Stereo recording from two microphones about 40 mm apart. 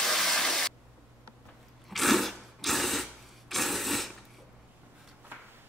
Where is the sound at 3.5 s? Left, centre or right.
Centre.